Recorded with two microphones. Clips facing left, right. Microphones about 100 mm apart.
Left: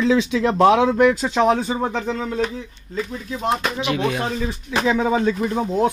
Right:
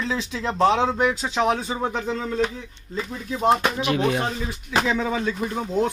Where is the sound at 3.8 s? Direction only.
40° right (ahead or behind).